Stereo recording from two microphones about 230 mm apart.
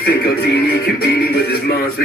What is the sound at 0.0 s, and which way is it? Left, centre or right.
Music, left.